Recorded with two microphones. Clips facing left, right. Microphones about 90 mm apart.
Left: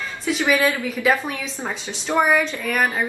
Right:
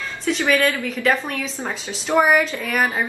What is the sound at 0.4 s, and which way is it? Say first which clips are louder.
A woman's voice: even; 15° left (ahead or behind).